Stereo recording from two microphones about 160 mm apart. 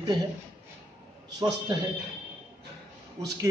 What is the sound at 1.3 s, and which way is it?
Speech, 25° right (ahead or behind).